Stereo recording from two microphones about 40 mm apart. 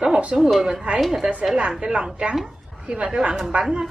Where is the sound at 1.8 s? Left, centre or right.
Right.